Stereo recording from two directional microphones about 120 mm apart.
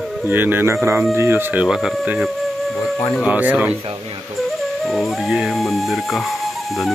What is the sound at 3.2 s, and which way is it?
Speech, 10° right (ahead or behind).